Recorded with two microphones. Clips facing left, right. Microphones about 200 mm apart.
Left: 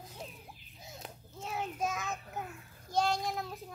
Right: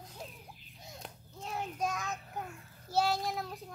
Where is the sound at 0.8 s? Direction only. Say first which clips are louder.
Left 1 dB; 5° left (ahead or behind).